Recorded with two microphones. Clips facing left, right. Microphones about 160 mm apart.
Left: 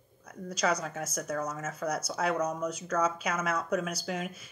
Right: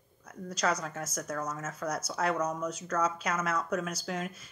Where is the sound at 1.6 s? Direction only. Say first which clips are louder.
Left 2 dB; 55° left (ahead or behind).